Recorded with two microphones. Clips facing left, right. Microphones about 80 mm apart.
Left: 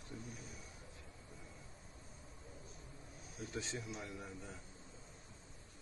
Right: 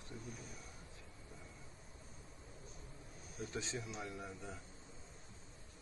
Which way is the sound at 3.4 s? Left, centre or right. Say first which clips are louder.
Right 1 dB; centre.